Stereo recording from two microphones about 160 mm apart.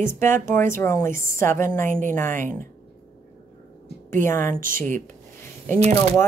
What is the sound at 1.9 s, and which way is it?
Speech, 55° right (ahead or behind).